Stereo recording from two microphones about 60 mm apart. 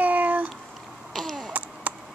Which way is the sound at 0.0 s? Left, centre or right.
Right.